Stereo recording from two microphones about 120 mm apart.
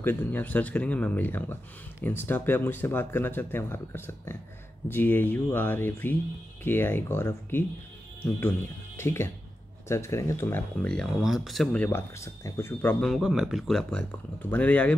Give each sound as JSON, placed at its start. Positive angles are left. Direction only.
{"t": 0.0, "sound": "speech", "side_deg": 15}
{"t": 10.9, "sound": "speech", "side_deg": 0}
{"t": 12.2, "sound": "speech", "side_deg": 20}
{"t": 13.0, "sound": "speech", "side_deg": 0}